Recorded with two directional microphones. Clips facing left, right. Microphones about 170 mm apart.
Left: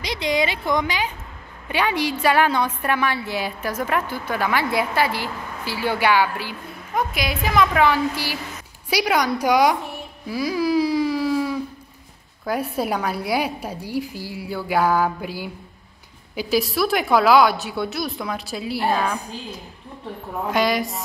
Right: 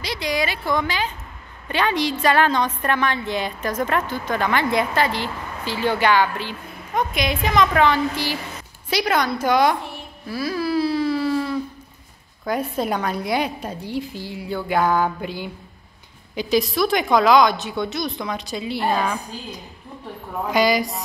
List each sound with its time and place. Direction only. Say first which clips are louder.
0.0 s a woman's voice: left 2 dB; 20° left (ahead or behind)
10.2 s a sound: left 2 dB; 10° left (ahead or behind)
12.4 s a woman's voice: even; 10° left (ahead or behind)